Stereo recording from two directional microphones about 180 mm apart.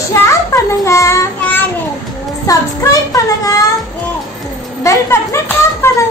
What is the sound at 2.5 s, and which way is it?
Speech, 20° left (ahead or behind).